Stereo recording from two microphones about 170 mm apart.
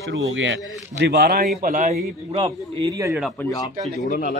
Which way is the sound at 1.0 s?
70° right (ahead or behind).